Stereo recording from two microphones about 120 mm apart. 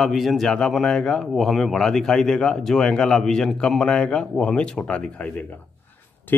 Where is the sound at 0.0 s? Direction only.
Centre (ahead or behind).